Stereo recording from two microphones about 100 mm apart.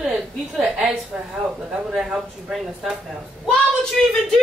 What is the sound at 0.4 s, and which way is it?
Speech, centre (ahead or behind).